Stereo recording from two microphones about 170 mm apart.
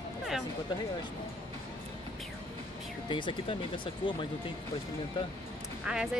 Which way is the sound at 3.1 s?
30° left (ahead or behind).